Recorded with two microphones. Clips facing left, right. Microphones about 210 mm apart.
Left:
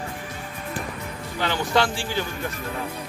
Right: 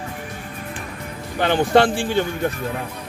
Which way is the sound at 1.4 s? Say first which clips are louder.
Right 7 dB; 55° right (ahead or behind).